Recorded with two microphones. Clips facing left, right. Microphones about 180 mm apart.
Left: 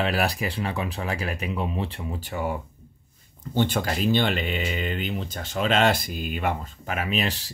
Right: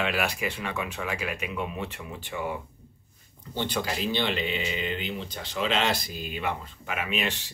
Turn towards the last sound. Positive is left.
turn(degrees=35)  # may be behind; listen again after turning